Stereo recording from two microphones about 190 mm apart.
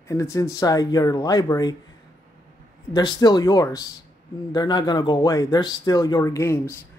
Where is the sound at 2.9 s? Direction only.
20° left (ahead or behind).